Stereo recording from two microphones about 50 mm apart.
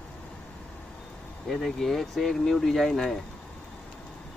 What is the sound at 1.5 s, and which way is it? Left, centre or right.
Speech, centre.